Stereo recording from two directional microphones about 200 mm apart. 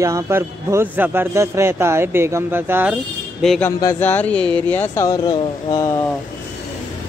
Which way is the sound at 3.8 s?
10° left (ahead or behind).